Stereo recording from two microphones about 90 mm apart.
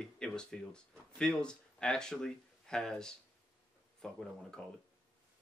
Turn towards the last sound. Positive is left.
turn(degrees=10)  # may be behind; listen again after turning